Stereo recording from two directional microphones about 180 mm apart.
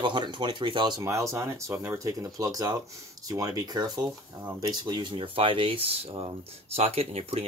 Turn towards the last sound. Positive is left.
turn(degrees=-35)  # may be behind; listen again after turning